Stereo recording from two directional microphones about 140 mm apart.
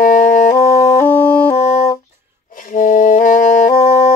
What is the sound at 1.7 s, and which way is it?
Music, 65° left (ahead or behind).